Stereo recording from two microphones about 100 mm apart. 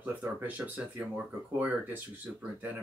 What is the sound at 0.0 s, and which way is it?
Speech, 15° right (ahead or behind).